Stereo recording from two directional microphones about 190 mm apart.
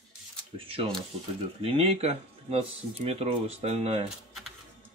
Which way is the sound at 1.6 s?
30° right (ahead or behind).